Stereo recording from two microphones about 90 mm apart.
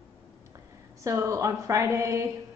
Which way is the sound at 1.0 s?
35° right (ahead or behind).